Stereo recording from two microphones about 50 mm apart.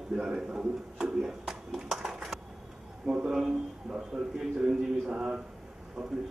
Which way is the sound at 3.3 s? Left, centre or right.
Centre.